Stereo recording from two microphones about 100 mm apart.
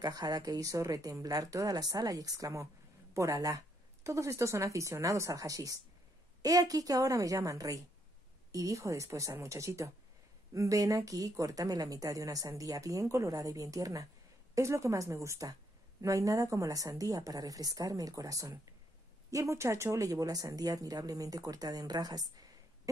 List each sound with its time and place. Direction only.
0.0 s speech: 40° right (ahead or behind)